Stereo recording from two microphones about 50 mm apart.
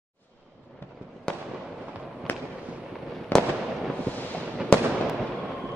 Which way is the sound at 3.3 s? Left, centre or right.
Left.